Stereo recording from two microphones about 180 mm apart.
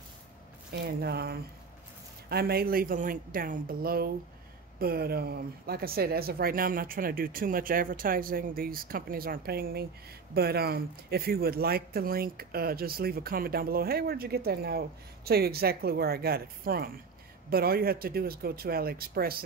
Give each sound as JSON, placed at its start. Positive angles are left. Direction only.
{"t": 0.8, "sound": "speech", "side_deg": -60}